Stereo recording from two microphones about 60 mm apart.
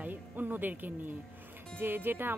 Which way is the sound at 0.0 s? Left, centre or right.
Right.